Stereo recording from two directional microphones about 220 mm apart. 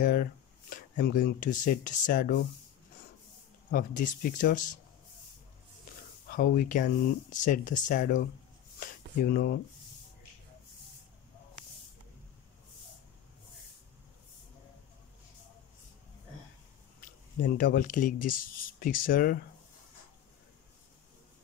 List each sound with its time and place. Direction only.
0.0 s speech: 40° left (ahead or behind)
3.7 s speech: 40° left (ahead or behind)
6.3 s speech: 40° left (ahead or behind)
8.7 s a sound: 40° left (ahead or behind)
17.4 s speech: 40° left (ahead or behind)